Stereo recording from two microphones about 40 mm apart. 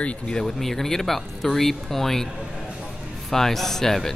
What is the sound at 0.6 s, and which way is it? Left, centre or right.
A man's voice, centre.